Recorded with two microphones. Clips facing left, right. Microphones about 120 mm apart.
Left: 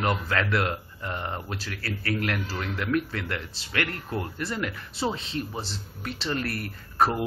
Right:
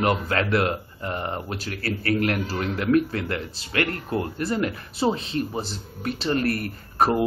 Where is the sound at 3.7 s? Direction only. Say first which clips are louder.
Right 5 dB; 45° right (ahead or behind).